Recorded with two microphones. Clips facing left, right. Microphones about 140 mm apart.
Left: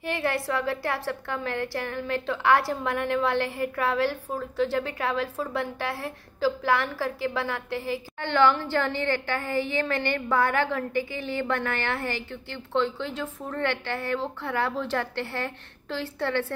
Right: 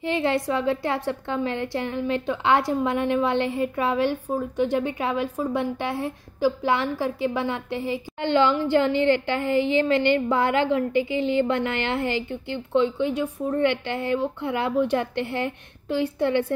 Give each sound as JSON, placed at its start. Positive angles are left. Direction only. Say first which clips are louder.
{"t": 0.0, "sound": "a woman's voice", "louder": "right 5 dB", "side_deg": -20}